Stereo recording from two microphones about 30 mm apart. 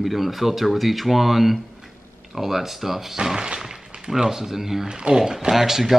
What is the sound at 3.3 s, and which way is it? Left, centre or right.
Speech, right.